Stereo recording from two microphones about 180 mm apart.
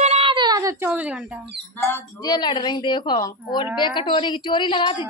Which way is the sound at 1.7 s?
10° left (ahead or behind).